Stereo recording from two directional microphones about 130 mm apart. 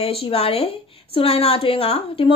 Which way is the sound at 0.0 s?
50° left (ahead or behind).